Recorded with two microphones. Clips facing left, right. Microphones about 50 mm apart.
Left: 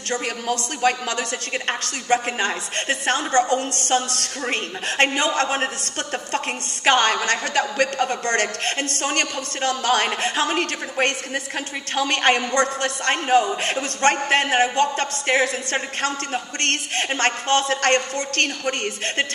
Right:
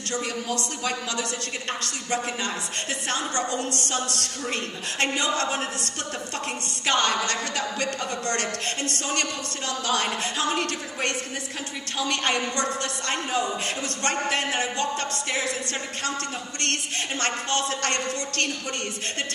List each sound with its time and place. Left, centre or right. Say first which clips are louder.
0.2 s a woman's voice: left 3 dB; left